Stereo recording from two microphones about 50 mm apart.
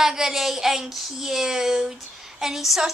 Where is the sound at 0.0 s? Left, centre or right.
Centre.